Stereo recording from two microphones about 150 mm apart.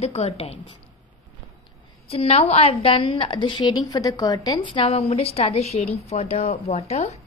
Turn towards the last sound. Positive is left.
turn(degrees=45)  # may be behind; listen again after turning